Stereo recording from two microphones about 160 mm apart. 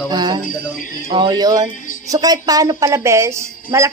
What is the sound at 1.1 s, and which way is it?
A woman's voice, 25° right (ahead or behind).